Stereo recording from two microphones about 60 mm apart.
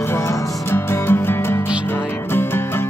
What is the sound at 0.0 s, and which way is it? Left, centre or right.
Music, left.